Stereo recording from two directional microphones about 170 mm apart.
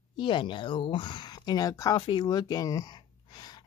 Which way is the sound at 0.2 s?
30° left (ahead or behind).